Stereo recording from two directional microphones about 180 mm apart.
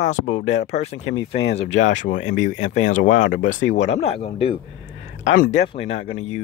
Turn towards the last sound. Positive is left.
turn(degrees=35)  # may be behind; listen again after turning